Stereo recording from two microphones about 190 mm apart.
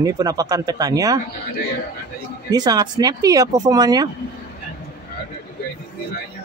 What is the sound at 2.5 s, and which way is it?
A man's voice, 20° right (ahead or behind).